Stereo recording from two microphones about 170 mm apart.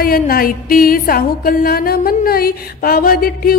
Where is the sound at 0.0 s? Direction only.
60° left (ahead or behind).